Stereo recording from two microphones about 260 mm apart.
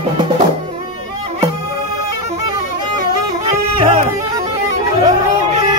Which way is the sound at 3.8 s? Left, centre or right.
Right.